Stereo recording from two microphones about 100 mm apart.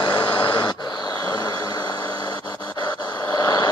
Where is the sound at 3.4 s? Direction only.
35° left (ahead or behind).